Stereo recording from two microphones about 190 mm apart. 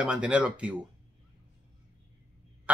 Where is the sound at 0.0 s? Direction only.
5° right (ahead or behind).